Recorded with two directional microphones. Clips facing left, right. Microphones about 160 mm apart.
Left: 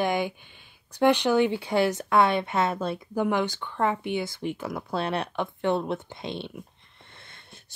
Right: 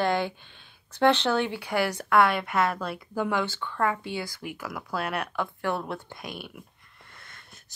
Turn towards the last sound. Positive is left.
turn(degrees=25)  # may be behind; listen again after turning